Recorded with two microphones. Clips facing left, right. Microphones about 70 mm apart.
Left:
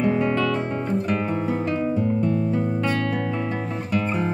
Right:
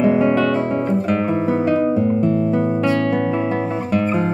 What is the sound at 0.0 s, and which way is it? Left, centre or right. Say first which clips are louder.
Music: right 6 dB; centre.